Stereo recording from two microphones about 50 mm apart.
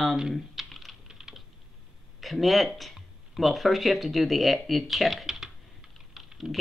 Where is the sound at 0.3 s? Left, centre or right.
Centre.